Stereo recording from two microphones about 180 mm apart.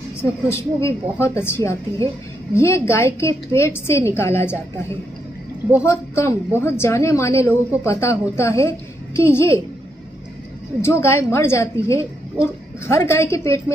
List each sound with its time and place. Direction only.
0.2 s a woman's voice: 15° left (ahead or behind)
5.9 s a woman's voice: 15° left (ahead or behind)
10.8 s a woman's voice: 15° left (ahead or behind)